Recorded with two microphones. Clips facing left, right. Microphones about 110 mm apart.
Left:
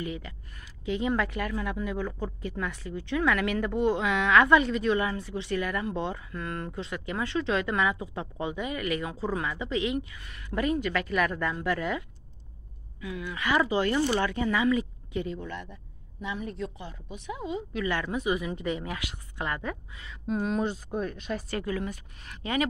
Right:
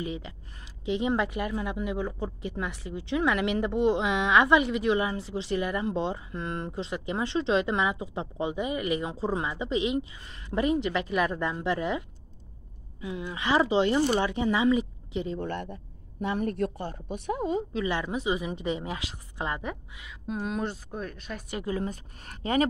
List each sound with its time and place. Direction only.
0.0 s speech: 25° right (ahead or behind)
13.0 s speech: 25° right (ahead or behind)
15.4 s speech: 55° right (ahead or behind)
17.7 s speech: 20° right (ahead or behind)
20.0 s speech: 5° right (ahead or behind)
21.5 s speech: 20° right (ahead or behind)
21.7 s speech: 40° right (ahead or behind)